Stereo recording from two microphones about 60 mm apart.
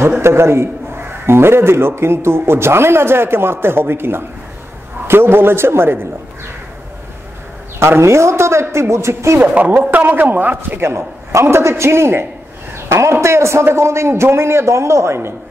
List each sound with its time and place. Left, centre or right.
0.2 s a man's voice: right
7.8 s a man's voice: right
9.4 s a man's voice: right
10.8 s a man's voice: right